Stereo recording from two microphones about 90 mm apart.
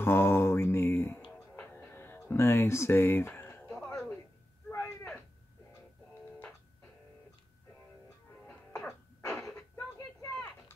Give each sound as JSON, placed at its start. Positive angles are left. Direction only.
{"t": 0.0, "sound": "mantra", "side_deg": 25}
{"t": 1.7, "sound": "a sound", "side_deg": 25}
{"t": 3.6, "sound": "music", "side_deg": 15}
{"t": 8.7, "sound": "music", "side_deg": 35}